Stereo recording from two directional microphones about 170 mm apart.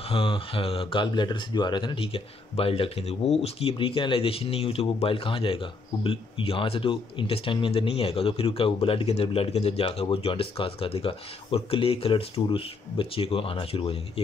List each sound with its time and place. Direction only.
0.1 s speech: 30° left (ahead or behind)